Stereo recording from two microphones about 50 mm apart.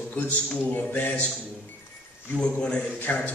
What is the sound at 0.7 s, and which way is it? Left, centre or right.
Speech, left.